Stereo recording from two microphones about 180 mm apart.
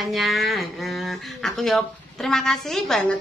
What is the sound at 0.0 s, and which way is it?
Speech, centre (ahead or behind).